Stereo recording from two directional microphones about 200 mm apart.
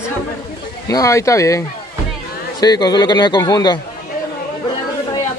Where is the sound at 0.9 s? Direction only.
15° left (ahead or behind).